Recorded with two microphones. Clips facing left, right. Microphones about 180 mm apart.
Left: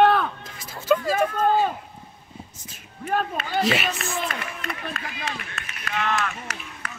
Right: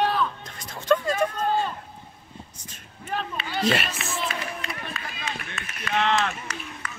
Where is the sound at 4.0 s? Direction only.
50° left (ahead or behind).